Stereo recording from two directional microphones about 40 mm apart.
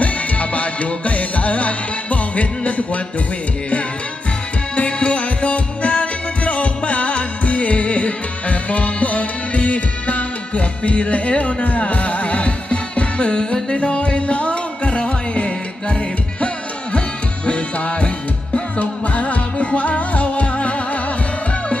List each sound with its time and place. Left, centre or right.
0.0 s music: left
4.7 s music: left
17.5 s music: left